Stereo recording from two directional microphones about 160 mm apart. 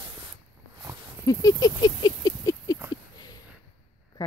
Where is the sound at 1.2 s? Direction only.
20° left (ahead or behind).